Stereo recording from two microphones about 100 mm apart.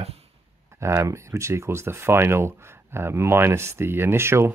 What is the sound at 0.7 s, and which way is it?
Speech, 30° right (ahead or behind).